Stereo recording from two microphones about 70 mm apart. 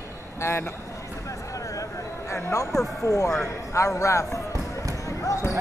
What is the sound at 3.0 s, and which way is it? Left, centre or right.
Speech, left.